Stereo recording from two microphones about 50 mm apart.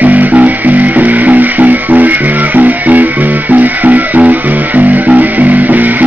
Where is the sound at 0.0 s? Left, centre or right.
Right.